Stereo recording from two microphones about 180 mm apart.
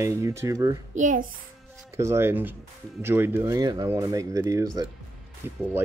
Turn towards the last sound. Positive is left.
turn(degrees=-10)  # may be behind; listen again after turning